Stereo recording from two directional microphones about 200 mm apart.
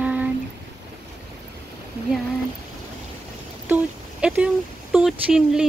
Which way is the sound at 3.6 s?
10° right (ahead or behind).